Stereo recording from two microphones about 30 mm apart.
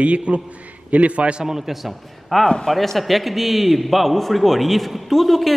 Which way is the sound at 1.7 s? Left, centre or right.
Centre.